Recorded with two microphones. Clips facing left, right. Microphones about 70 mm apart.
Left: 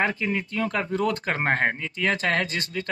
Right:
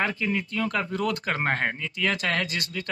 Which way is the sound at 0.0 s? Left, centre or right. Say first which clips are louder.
Left 2 dB; left.